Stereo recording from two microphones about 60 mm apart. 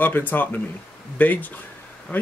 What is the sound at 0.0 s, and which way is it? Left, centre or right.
Speech, left.